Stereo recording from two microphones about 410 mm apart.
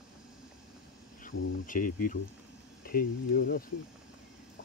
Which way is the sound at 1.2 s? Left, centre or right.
Centre.